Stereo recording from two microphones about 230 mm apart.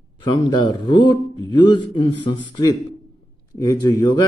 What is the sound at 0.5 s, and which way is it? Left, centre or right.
A man's voice, centre.